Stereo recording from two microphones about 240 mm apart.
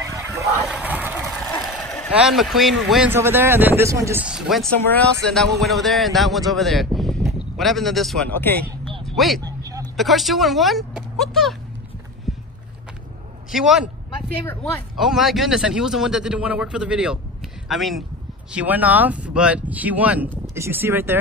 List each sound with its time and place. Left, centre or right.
0.0 s vehicle: centre
1.5 s speech: centre
9.4 s a sound: centre
9.9 s speech: centre
12.3 s a sound: centre
13.5 s a man's voice: centre